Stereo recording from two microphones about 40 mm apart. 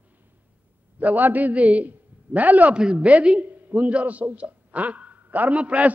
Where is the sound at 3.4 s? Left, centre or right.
Right.